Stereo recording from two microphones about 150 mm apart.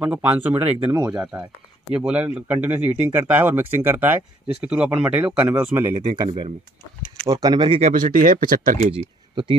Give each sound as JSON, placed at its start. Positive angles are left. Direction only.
{"t": 0.0, "sound": "speech", "side_deg": -10}
{"t": 0.9, "sound": "speech", "side_deg": -25}
{"t": 1.9, "sound": "speech", "side_deg": -5}
{"t": 6.2, "sound": "speech", "side_deg": -45}
{"t": 7.2, "sound": "speech", "side_deg": -25}
{"t": 7.8, "sound": "speech", "side_deg": -60}
{"t": 9.3, "sound": "speech", "side_deg": -30}